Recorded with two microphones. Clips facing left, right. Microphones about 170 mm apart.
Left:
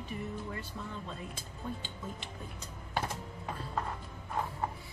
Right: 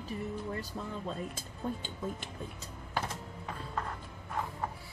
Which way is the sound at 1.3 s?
45° right (ahead or behind).